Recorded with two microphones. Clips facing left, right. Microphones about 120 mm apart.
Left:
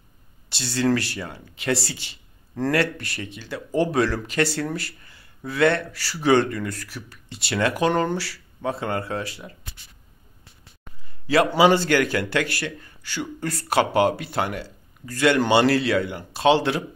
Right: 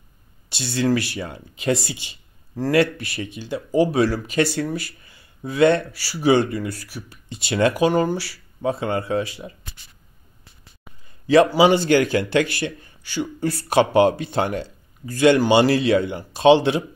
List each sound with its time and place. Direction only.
0.5 s speech: 15° right (ahead or behind)
7.8 s speech: 10° right (ahead or behind)
11.2 s speech: 20° right (ahead or behind)